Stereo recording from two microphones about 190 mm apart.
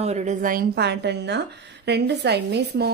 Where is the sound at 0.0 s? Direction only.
35° right (ahead or behind).